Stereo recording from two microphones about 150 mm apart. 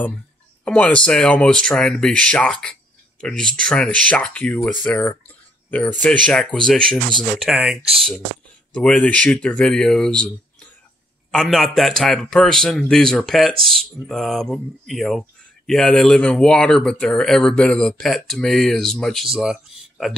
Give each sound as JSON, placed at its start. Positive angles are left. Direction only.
{"t": 0.7, "sound": "speech", "side_deg": 10}
{"t": 11.3, "sound": "speech", "side_deg": 0}